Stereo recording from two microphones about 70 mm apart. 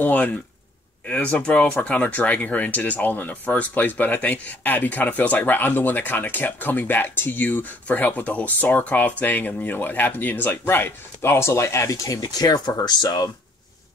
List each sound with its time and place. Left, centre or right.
0.0 s speech: left